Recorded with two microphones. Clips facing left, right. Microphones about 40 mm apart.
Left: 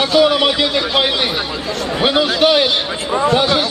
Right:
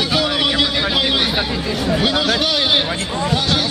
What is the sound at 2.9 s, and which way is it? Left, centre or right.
Speech, left.